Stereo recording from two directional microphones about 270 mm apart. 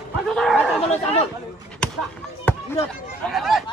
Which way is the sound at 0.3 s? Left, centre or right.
Centre.